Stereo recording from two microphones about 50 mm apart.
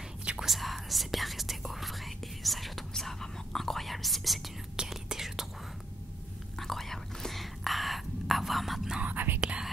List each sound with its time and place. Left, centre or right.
0.4 s whispering: centre
6.6 s whispering: centre
9.0 s whispering: right
9.4 s whispering: centre